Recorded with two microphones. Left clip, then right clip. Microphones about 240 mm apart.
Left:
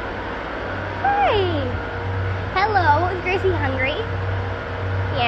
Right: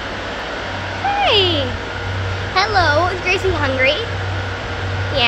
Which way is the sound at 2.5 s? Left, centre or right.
Centre.